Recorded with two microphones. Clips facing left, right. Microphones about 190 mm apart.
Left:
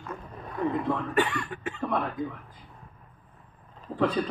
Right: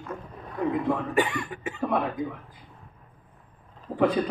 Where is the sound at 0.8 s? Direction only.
10° right (ahead or behind).